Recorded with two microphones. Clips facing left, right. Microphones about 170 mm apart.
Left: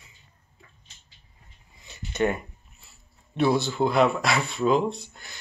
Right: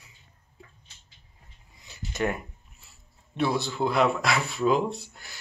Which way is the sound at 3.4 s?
Centre (ahead or behind).